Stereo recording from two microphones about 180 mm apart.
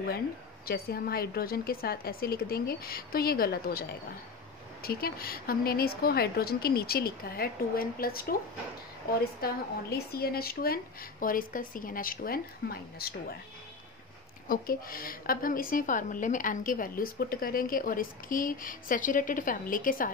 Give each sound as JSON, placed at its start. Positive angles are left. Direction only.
{"t": 0.7, "sound": "speech", "side_deg": 60}
{"t": 4.8, "sound": "speech", "side_deg": 55}
{"t": 14.5, "sound": "a woman's voice", "side_deg": 55}